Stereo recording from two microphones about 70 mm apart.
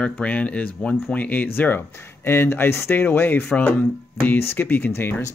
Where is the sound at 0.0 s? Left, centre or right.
Centre.